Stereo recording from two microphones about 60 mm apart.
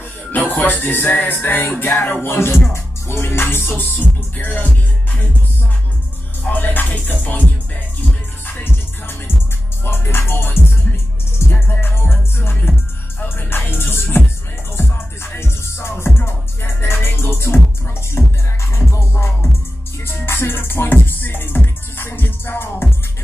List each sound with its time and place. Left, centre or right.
0.3 s speech: left
1.1 s music: left
6.4 s music: left
8.5 s music: left